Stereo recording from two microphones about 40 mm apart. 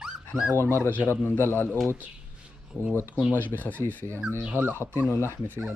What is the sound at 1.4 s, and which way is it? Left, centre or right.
Speech, left.